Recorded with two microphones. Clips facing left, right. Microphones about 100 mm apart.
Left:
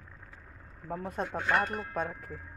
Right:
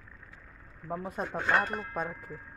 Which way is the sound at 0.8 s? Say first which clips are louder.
Even; 5° right (ahead or behind).